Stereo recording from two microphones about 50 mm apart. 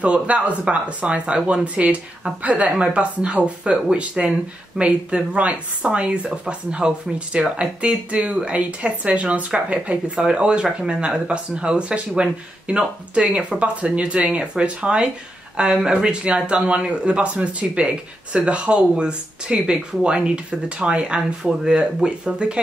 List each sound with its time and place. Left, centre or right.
0.0 s speech: right